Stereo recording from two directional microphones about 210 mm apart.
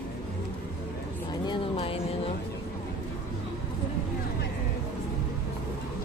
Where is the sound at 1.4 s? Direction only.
25° left (ahead or behind).